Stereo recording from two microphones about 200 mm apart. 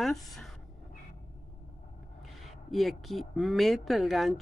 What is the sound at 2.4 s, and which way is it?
Speech, centre (ahead or behind).